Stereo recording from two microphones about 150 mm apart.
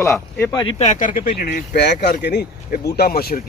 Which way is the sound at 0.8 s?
55° left (ahead or behind).